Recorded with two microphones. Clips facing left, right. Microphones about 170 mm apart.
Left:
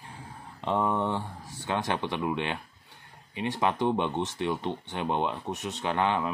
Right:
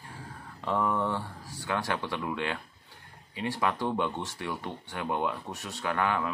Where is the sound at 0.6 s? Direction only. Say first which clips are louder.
Left 1 dB; 20° left (ahead or behind).